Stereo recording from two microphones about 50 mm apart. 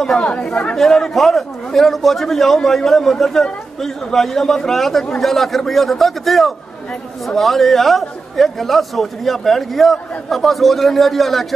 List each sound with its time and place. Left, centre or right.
0.1 s speech: centre
0.5 s speech: left
0.7 s a man's voice: centre